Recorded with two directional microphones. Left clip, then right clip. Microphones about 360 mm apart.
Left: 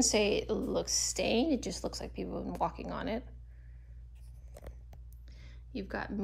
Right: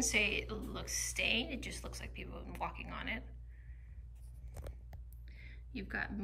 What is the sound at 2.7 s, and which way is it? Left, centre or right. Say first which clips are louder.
Speech: left 6 dB; centre.